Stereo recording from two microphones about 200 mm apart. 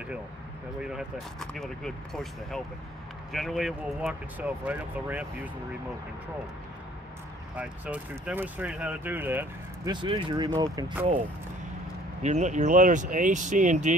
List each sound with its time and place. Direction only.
0.7 s speech: 5° right (ahead or behind)
7.5 s speech: 5° right (ahead or behind)
9.8 s speech: 25° right (ahead or behind)
12.2 s speech: 35° right (ahead or behind)